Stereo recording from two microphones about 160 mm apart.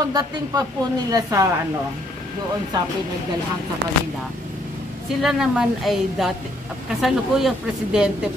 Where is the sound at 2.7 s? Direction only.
25° right (ahead or behind).